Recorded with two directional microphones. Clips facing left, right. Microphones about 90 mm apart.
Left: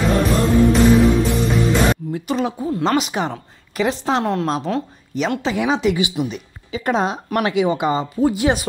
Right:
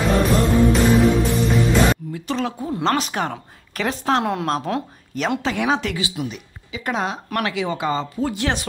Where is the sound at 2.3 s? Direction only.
10° left (ahead or behind).